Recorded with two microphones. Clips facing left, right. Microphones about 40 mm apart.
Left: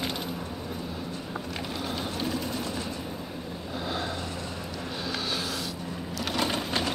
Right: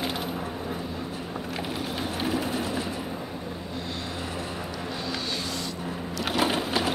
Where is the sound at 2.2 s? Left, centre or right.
Right.